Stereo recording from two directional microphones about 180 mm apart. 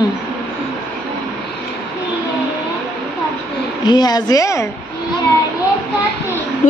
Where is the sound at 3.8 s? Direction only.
25° left (ahead or behind).